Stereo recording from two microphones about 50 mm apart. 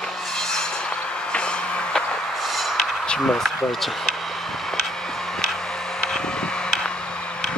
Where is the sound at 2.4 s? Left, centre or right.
Centre.